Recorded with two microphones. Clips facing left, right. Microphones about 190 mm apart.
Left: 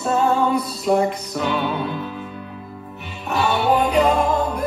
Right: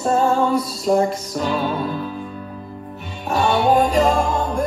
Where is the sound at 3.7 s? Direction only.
40° right (ahead or behind).